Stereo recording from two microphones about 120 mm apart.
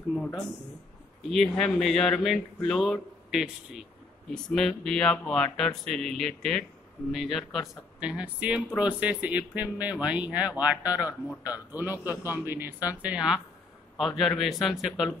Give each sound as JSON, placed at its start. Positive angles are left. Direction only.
{"t": 0.2, "sound": "speech", "side_deg": 5}